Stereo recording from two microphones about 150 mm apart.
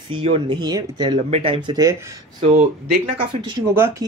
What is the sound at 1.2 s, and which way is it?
Speech, 40° right (ahead or behind).